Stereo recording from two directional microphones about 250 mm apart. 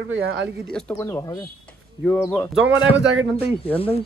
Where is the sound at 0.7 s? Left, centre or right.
Centre.